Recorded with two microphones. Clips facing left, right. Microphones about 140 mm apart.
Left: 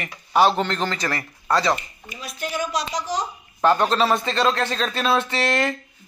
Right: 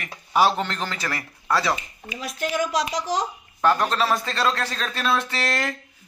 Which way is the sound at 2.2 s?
90° right.